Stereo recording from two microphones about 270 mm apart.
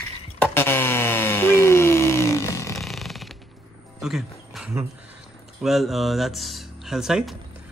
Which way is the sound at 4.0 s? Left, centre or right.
Centre.